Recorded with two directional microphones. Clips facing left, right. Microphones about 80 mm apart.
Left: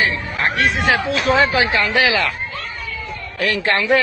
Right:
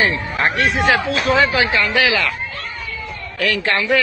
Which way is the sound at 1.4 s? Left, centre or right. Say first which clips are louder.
Even; left.